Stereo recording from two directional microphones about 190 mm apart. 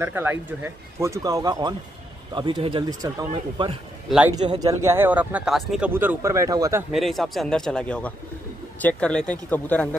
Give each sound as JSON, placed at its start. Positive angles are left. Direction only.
{"t": 0.0, "sound": "speech", "side_deg": -10}
{"t": 6.9, "sound": "speech", "side_deg": 0}